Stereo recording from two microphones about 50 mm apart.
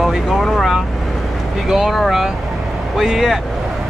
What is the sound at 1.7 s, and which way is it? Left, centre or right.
Speech, centre.